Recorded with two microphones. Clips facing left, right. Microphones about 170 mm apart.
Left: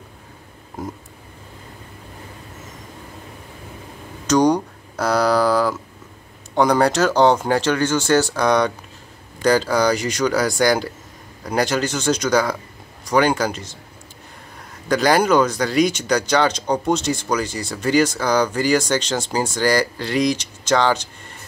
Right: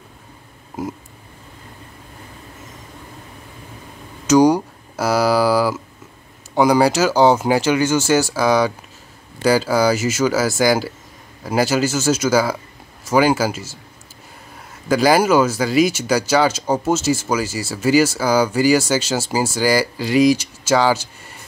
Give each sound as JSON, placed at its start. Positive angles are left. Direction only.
{"t": 4.3, "sound": "a sound", "side_deg": -5}
{"t": 6.5, "sound": "speech", "side_deg": -5}
{"t": 14.9, "sound": "speech", "side_deg": -5}